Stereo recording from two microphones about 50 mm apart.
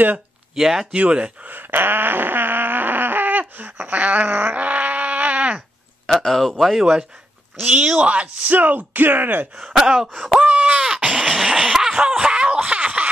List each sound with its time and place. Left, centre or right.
0.6 s speech: centre
0.9 s speech: right
1.5 s a sound: right
6.0 s speech: centre
6.8 s speech: centre
8.5 s speech: right
9.6 s speech: centre
10.0 s a sound: centre
10.4 s groan: right
11.1 s a sound: centre
12.5 s laughter: right